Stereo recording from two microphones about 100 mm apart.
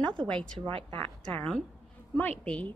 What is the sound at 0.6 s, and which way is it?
Speech, 65° right (ahead or behind).